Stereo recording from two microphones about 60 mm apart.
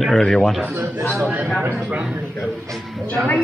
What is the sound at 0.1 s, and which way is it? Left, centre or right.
Speech, centre.